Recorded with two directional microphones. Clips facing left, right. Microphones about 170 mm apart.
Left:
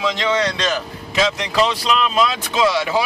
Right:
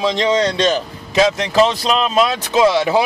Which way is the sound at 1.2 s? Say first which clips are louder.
Right 4 dB; 40° right (ahead or behind).